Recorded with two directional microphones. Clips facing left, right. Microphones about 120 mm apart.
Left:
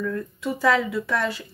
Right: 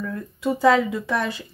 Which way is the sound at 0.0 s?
15° right (ahead or behind).